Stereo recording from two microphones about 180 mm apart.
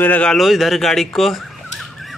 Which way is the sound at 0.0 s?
10° left (ahead or behind).